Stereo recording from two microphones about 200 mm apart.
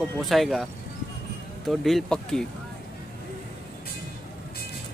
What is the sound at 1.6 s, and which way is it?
Speech, centre (ahead or behind).